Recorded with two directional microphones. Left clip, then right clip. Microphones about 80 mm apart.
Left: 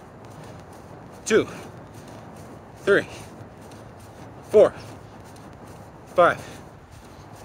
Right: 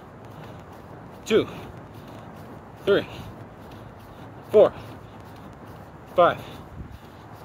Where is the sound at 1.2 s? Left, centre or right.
Centre.